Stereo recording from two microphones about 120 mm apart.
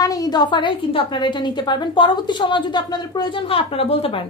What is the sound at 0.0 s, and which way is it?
A woman's voice, 30° left (ahead or behind).